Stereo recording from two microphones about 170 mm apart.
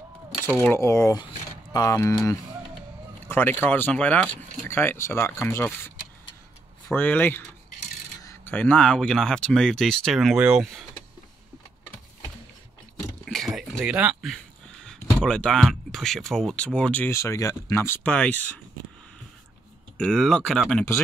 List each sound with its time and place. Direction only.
0.7 s speech: 15° left (ahead or behind); by 10.9 s centre (ahead or behind)
13.2 s a sound: centre (ahead or behind)
15.2 s speech: 5° left (ahead or behind)
20.0 s speech: 5° left (ahead or behind)